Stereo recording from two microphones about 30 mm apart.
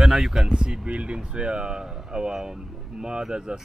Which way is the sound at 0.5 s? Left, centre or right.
Right.